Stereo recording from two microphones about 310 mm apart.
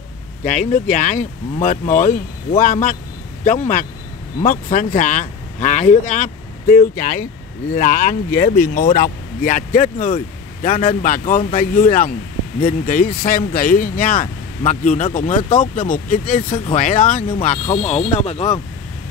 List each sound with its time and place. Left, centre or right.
0.4 s speech: left